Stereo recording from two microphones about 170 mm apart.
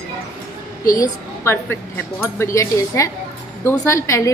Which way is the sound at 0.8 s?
20° left (ahead or behind).